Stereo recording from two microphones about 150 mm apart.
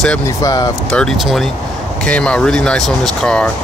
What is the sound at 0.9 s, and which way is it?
Speech, 5° left (ahead or behind).